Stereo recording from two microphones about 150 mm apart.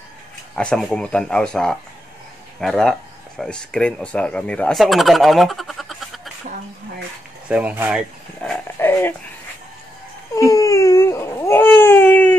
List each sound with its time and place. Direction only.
0.6 s speech: 5° left (ahead or behind)
7.4 s speech: 10° right (ahead or behind)
8.5 s dog: 10° left (ahead or behind)
10.3 s baby cry: 20° left (ahead or behind)